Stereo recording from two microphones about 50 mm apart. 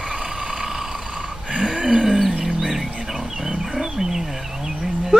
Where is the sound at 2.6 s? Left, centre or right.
Centre.